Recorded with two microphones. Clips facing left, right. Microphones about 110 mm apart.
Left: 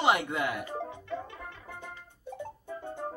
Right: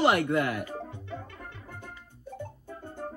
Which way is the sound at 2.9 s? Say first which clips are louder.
Left 1 dB; 20° left (ahead or behind).